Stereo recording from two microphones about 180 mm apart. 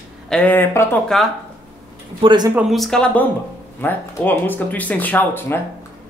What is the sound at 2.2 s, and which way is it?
Speech, 25° right (ahead or behind).